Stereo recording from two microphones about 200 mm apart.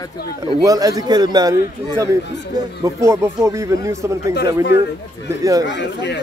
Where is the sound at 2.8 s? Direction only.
15° right (ahead or behind).